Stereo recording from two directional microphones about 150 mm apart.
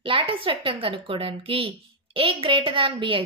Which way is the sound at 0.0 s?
35° right (ahead or behind).